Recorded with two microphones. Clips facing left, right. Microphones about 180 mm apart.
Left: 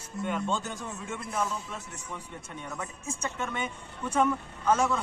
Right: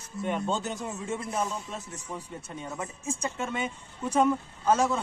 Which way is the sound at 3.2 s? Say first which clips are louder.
Right 1 dB; 30° right (ahead or behind).